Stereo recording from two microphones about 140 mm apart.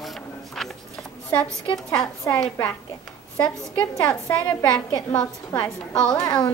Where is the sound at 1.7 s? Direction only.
5° left (ahead or behind).